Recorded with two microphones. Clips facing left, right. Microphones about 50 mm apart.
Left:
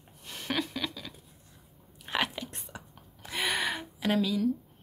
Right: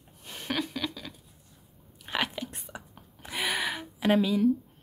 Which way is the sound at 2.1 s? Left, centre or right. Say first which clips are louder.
Even; centre.